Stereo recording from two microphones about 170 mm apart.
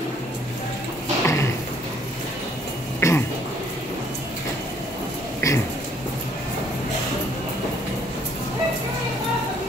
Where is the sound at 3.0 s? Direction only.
15° left (ahead or behind).